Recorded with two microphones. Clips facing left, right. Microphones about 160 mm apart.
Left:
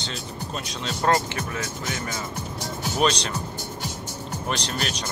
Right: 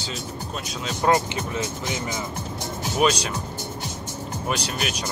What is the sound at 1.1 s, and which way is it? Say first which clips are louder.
Speech: right 2 dB; 20° right (ahead or behind).